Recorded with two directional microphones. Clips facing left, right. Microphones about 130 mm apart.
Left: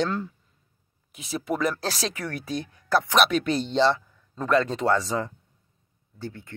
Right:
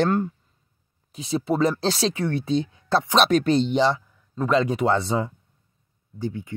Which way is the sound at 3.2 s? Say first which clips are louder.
Right 5 dB; 35° right (ahead or behind).